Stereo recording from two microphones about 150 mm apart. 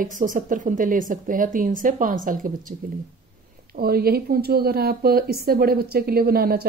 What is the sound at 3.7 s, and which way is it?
Speech, 90° right.